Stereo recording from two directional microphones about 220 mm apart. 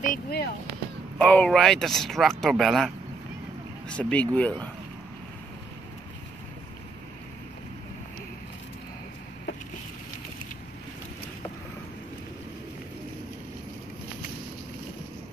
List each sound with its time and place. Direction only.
0.0 s speech: 40° left (ahead or behind)
1.1 s speech: 5° left (ahead or behind)
3.9 s speech: 5° left (ahead or behind)